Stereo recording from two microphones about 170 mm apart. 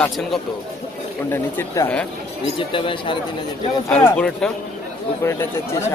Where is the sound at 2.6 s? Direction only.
30° left (ahead or behind).